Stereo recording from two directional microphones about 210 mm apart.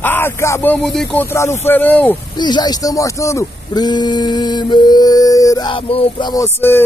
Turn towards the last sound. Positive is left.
turn(degrees=10)  # may be behind; listen again after turning